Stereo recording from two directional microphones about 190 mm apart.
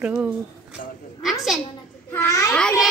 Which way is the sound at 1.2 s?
Centre (ahead or behind).